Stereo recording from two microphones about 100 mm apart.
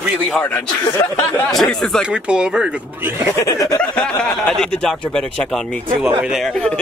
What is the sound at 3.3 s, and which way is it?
Speech, 35° left (ahead or behind).